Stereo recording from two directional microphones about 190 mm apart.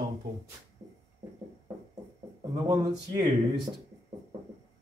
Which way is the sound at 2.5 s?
25° right (ahead or behind).